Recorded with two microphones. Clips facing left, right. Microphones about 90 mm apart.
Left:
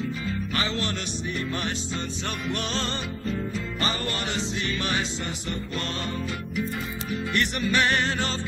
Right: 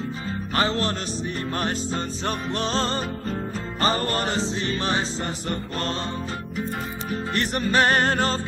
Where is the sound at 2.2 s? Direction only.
35° right (ahead or behind).